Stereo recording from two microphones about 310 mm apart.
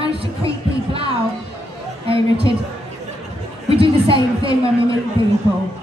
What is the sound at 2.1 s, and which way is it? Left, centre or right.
Speech, centre.